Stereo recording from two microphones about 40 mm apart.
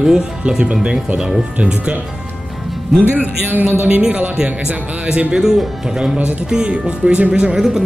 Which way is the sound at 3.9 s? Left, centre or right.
Right.